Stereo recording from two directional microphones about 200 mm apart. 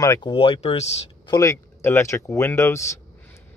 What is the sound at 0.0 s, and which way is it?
Speech, 20° left (ahead or behind).